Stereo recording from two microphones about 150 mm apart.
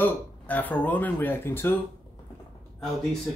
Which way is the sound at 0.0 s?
10° left (ahead or behind).